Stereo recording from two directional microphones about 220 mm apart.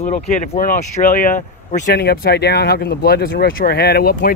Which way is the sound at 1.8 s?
45° left (ahead or behind).